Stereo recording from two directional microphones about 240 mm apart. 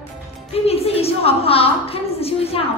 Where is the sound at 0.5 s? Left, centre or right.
Left.